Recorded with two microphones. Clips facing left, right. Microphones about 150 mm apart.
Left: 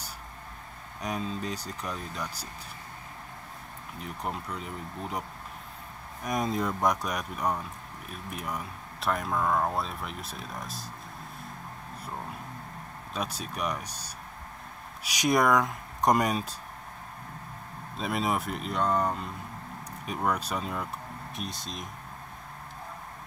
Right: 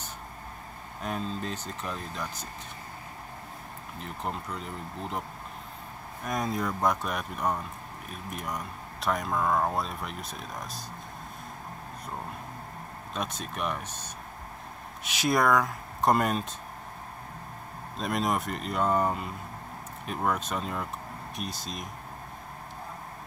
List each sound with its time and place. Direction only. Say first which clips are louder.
1.0 s speech: even; centre (ahead or behind)
4.0 s speech: even; 5° left (ahead or behind)
6.2 s speech: left 1 dB; centre (ahead or behind)
13.1 s speech: even; centre (ahead or behind)
15.2 s speech: left 1 dB; centre (ahead or behind)
17.9 s speech: right 1 dB; centre (ahead or behind)